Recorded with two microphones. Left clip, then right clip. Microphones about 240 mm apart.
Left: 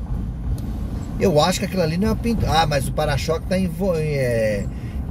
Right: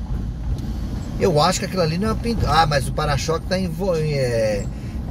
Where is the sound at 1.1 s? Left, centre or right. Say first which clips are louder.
Even; left.